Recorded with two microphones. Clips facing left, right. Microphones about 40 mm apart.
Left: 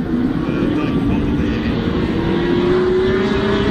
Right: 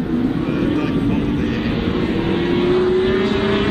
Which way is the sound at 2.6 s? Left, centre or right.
Right.